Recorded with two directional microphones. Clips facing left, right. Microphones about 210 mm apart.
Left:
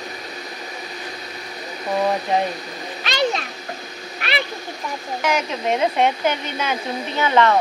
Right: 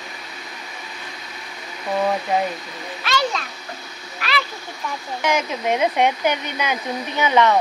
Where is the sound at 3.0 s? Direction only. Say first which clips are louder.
Left 2 dB; 20° left (ahead or behind).